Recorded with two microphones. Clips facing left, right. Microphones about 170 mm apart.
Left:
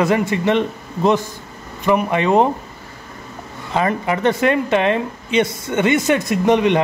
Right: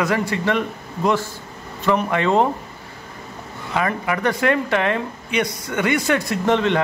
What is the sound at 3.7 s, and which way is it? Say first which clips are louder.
Speech: left 3 dB; 25° left (ahead or behind).